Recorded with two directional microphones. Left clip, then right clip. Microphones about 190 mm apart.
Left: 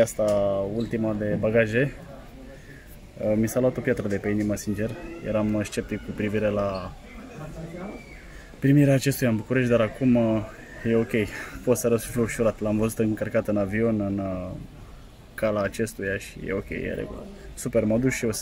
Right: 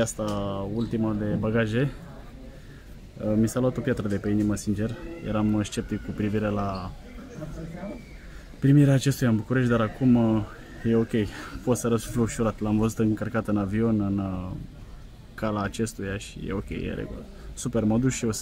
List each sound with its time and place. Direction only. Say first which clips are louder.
0.2 s speech: left 8 dB; centre (ahead or behind)
3.3 s speech: left 2 dB; 10° right (ahead or behind)
8.5 s speech: left 1 dB; 10° right (ahead or behind)
15.3 s speech: left 4 dB; 10° right (ahead or behind)